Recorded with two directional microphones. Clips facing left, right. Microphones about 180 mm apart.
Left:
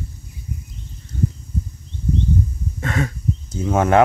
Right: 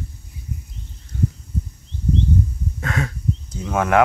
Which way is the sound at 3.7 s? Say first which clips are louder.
Left 2 dB; 25° left (ahead or behind).